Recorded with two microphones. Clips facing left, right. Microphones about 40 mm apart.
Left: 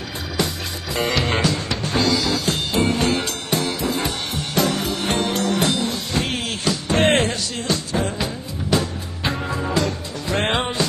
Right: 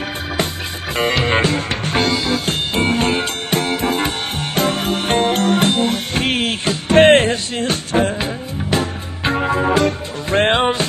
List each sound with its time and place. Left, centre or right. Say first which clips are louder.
0.9 s music: right 4 dB; right